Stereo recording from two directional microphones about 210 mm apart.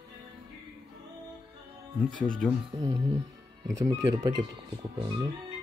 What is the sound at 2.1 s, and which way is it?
Speech, 40° right (ahead or behind).